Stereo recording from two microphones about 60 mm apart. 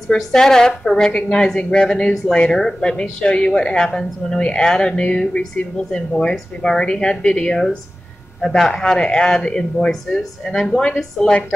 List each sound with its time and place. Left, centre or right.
0.1 s a woman's voice: centre